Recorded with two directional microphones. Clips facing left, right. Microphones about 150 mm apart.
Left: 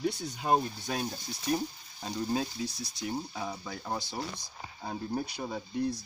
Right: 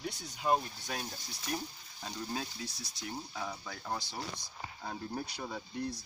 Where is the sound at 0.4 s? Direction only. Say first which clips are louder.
Left 3 dB; 25° left (ahead or behind).